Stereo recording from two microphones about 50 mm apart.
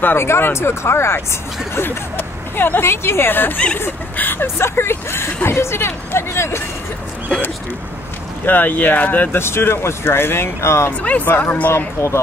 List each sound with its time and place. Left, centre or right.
0.0 s speech: left
1.8 s speech: left
4.6 s speech: left
8.5 s speech: left
9.3 s speech: left
11.0 s speech: left
11.2 s speech: left
12.0 s speech: left